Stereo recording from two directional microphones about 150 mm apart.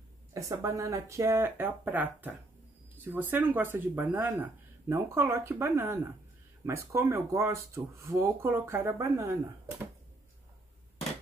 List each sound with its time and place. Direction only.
0.3 s speech: 20° right (ahead or behind)